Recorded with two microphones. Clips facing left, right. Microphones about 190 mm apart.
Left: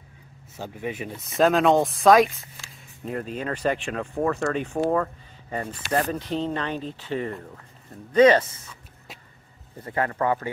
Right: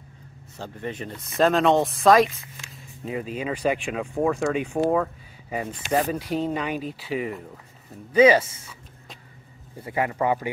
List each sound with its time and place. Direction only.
0.6 s speech: 5° left (ahead or behind); by 8.7 s 10° right (ahead or behind)
9.8 s speech: 10° right (ahead or behind)